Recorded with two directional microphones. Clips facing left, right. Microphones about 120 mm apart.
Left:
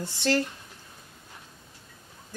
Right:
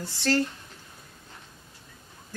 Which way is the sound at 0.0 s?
20° left (ahead or behind).